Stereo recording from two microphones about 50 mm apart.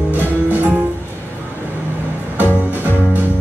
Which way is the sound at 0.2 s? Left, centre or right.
Right.